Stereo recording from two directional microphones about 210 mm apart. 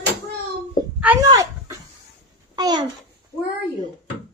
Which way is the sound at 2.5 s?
20° right (ahead or behind).